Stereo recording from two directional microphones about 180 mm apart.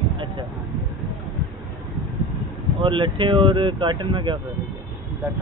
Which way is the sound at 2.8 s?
30° right (ahead or behind).